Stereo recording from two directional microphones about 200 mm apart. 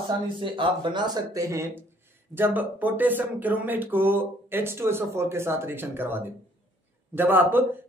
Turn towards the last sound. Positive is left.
turn(degrees=-10)  # may be behind; listen again after turning